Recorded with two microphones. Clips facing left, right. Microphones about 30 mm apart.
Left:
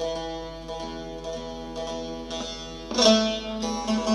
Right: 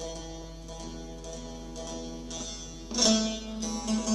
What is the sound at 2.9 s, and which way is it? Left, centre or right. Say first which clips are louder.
Music: left 7 dB; left.